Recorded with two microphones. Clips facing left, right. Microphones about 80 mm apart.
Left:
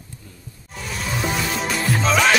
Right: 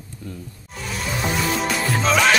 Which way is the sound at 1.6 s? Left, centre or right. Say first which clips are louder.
Even; centre.